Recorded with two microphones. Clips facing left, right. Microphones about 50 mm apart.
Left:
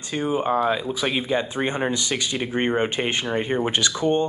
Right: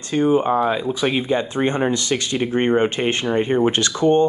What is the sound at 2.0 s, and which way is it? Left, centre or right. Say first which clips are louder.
Speech: right 4 dB; centre.